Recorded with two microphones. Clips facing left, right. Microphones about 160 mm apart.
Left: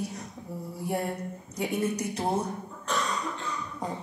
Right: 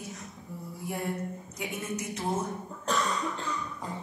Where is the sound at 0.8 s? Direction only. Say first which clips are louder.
Left 2 dB; 35° left (ahead or behind).